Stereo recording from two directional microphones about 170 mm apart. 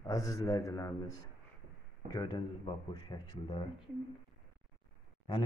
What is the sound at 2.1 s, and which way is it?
Speech, 25° left (ahead or behind).